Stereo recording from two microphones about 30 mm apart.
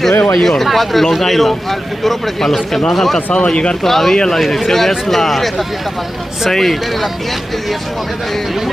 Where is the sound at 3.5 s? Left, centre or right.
Left.